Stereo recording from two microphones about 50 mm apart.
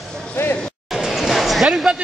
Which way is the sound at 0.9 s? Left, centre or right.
Centre.